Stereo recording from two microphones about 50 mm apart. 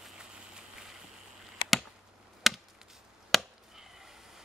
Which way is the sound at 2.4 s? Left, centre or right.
Centre.